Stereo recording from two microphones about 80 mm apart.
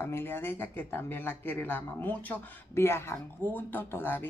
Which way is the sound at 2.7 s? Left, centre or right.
Left.